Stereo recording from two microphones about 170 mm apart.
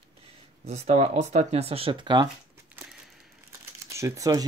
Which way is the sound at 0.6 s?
40° right (ahead or behind).